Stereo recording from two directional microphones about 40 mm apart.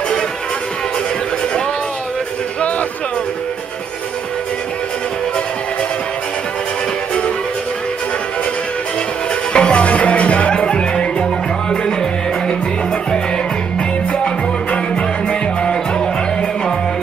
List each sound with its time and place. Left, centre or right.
9.5 s music: left
14.1 s music: left